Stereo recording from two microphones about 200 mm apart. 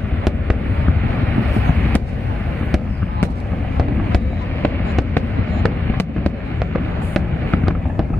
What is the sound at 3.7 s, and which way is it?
Fireworks, 5° left (ahead or behind).